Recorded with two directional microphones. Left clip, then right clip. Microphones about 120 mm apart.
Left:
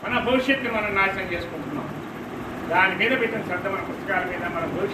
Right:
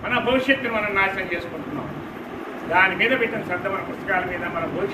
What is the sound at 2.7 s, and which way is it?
Speech, 5° left (ahead or behind).